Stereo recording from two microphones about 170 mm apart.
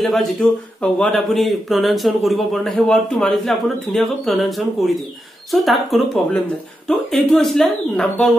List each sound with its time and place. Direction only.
0.0 s speech: centre (ahead or behind)